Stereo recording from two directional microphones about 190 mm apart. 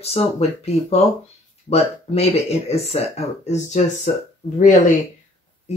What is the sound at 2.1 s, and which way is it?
Speech, 30° left (ahead or behind).